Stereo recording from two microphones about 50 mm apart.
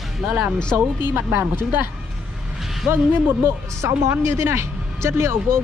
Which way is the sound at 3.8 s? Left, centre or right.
Right.